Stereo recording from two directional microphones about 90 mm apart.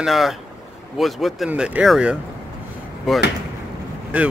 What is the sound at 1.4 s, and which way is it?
Speech, 15° right (ahead or behind).